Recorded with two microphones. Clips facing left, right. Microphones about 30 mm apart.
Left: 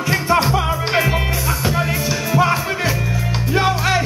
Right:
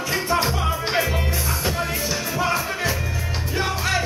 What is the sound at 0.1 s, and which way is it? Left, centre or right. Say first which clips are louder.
Music: left 6 dB; left.